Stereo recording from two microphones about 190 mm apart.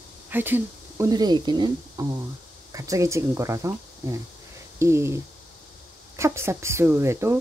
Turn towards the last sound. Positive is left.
turn(degrees=-15)  # may be behind; listen again after turning